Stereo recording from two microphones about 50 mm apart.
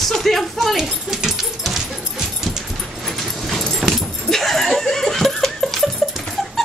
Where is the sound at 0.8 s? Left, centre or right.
Centre.